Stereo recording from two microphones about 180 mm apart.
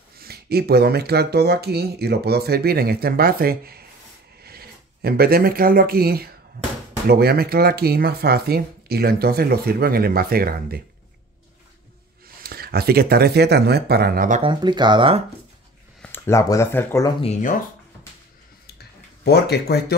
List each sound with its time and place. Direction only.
0.2 s speech: 60° right (ahead or behind)
12.4 s speech: 60° right (ahead or behind)
14.4 s speech: 25° right (ahead or behind)
16.0 s speech: 15° left (ahead or behind)
17.4 s speech: 45° left (ahead or behind)
18.8 s a sound: 65° left (ahead or behind)